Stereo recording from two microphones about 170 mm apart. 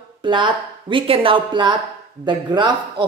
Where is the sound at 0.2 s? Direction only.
30° right (ahead or behind).